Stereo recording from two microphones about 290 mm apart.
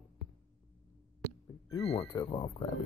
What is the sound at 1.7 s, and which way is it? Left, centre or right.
Speech, centre.